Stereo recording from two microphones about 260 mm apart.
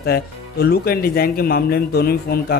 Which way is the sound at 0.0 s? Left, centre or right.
Left.